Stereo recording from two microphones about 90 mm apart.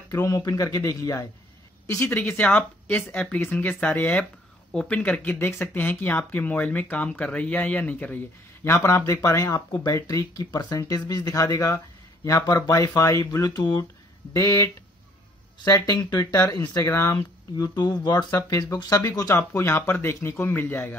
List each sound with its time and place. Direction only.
0.1 s a man's voice: 40° left (ahead or behind)
2.0 s speech: 20° left (ahead or behind)
5.4 s speech: 25° left (ahead or behind)
8.6 s speech: 30° left (ahead or behind); by 13.8 s 50° left (ahead or behind)
14.3 s speech: 35° left (ahead or behind)
16.9 s speech: 30° left (ahead or behind)
17.7 s speech: 50° left (ahead or behind)
18.3 s speech: 35° left (ahead or behind)